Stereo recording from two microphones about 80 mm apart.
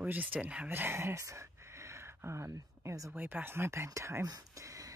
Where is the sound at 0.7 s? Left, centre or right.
Right.